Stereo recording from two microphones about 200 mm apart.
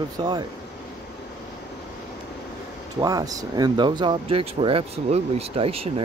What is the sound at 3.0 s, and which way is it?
Speech, 20° right (ahead or behind).